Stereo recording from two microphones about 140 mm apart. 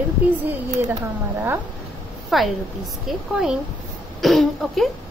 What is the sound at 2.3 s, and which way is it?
Speech, centre (ahead or behind).